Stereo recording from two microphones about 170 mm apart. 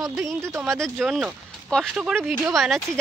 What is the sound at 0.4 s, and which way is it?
Speech, 15° right (ahead or behind).